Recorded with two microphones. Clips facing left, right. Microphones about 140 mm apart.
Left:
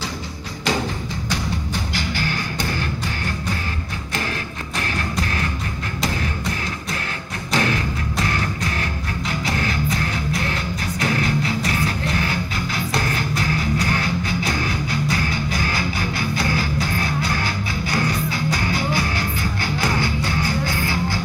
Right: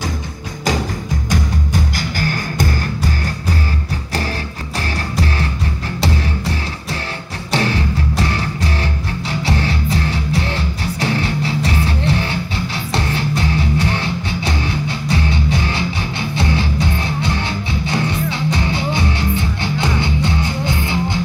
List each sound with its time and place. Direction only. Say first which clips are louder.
1.3 s music: right 5 dB; 45° right (ahead or behind)
4.9 s music: right 4 dB; 35° right (ahead or behind)